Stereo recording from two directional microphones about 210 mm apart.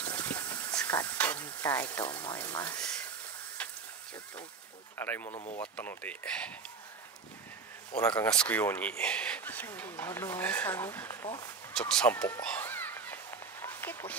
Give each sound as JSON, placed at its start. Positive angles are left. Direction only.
{"t": 0.1, "sound": "water", "side_deg": 10}
{"t": 2.3, "sound": "speech", "side_deg": 15}
{"t": 4.9, "sound": "speech", "side_deg": 10}
{"t": 5.3, "sound": "speech", "side_deg": 30}
{"t": 5.6, "sound": "speech", "side_deg": 5}
{"t": 8.0, "sound": "speech", "side_deg": 15}
{"t": 11.7, "sound": "a sound", "side_deg": 5}